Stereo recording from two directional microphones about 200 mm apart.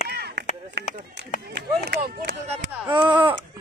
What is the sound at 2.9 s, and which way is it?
Speech, 25° right (ahead or behind).